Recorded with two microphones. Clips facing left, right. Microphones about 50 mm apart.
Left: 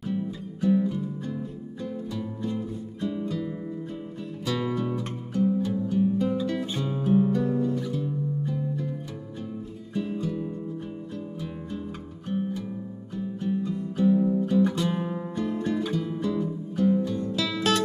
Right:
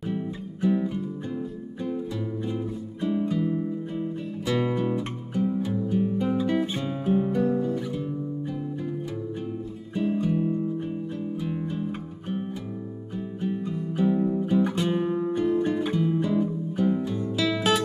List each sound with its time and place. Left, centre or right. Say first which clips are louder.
0.0 s music: even; right
7.4 s guitar: right 1 dB; right
10.1 s music: right 6 dB; right; by 17.8 s centre